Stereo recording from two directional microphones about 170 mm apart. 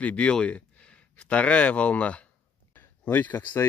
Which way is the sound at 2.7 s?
10° left (ahead or behind).